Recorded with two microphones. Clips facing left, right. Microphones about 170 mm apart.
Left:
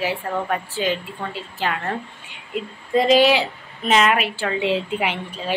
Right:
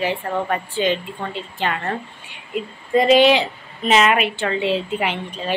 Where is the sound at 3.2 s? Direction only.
5° left (ahead or behind).